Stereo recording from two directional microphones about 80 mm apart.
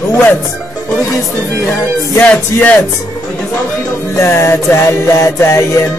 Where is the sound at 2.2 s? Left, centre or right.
Left.